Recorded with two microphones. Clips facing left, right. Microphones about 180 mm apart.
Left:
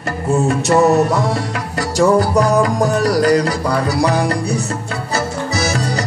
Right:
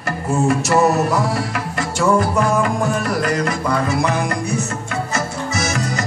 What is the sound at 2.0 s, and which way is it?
Music, 35° left (ahead or behind).